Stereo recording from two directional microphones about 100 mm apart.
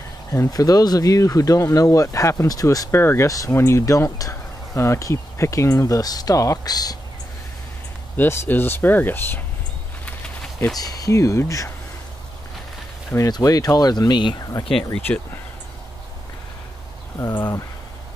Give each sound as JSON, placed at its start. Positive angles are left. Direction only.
{"t": 0.3, "sound": "speech", "side_deg": 35}
{"t": 8.2, "sound": "speech", "side_deg": 20}
{"t": 10.0, "sound": "a sound", "side_deg": 10}
{"t": 10.8, "sound": "speech", "side_deg": 40}
{"t": 13.3, "sound": "speech", "side_deg": 40}
{"t": 14.9, "sound": "speech", "side_deg": 20}